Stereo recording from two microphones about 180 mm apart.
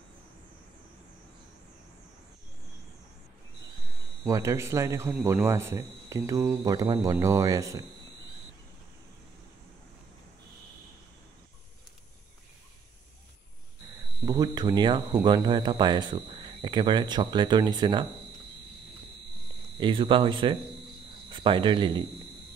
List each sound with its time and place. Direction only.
4.2 s speech: 15° right (ahead or behind)
14.2 s speech: 20° right (ahead or behind)
19.8 s speech: 30° right (ahead or behind)